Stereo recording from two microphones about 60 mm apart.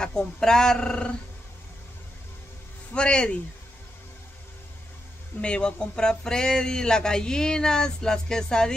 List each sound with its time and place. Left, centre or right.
0.0 s speech: centre
2.9 s speech: centre
5.4 s speech: centre